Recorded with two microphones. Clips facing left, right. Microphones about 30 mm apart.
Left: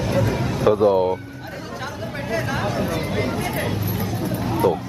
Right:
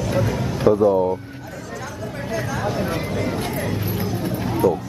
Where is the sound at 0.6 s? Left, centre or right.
Left.